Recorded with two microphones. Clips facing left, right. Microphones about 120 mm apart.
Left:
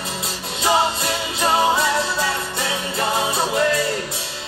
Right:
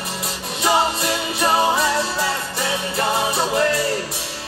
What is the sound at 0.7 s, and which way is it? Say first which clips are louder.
Music: even; 25° left (ahead or behind).